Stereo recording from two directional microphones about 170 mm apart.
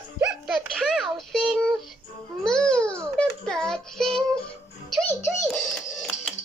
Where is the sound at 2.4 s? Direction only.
5° left (ahead or behind).